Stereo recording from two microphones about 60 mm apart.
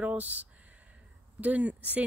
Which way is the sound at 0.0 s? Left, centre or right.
Right.